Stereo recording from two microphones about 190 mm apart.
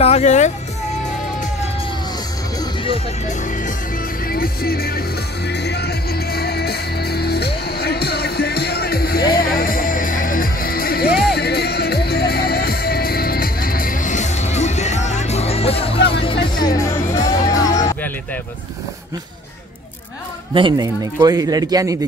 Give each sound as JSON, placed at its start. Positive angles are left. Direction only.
{"t": 0.0, "sound": "speech", "side_deg": 35}
{"t": 2.6, "sound": "music", "side_deg": 25}
{"t": 4.3, "sound": "music", "side_deg": 50}
{"t": 16.5, "sound": "music", "side_deg": 20}
{"t": 20.5, "sound": "speech", "side_deg": -25}